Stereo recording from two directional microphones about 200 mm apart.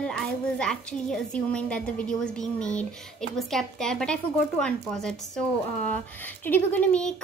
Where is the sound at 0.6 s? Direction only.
5° left (ahead or behind).